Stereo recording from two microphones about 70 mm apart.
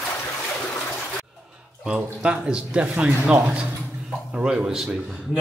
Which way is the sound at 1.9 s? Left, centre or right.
Centre.